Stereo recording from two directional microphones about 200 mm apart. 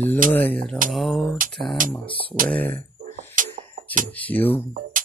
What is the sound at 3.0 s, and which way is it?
Music, 40° right (ahead or behind).